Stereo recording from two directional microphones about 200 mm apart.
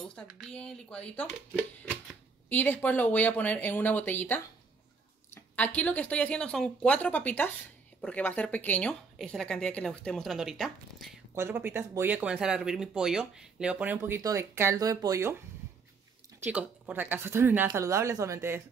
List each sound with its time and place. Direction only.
0.1 s speech: centre (ahead or behind)
11.3 s speech: 10° right (ahead or behind)
16.4 s speech: 5° right (ahead or behind)